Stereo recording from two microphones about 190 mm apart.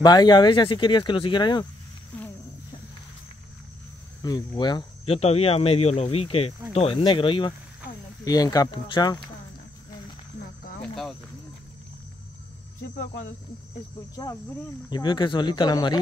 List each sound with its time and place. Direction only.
0.0 s speech: 20° left (ahead or behind)
4.2 s speech: 20° left (ahead or behind)
10.8 s cricket: centre (ahead or behind)
14.9 s speech: 25° left (ahead or behind)